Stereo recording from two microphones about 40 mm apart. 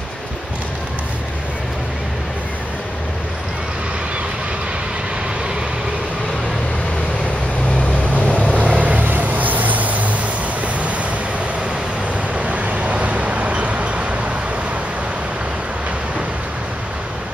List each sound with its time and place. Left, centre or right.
8.1 s vehicle: left
8.5 s vehicle: right
12.4 s vehicle: right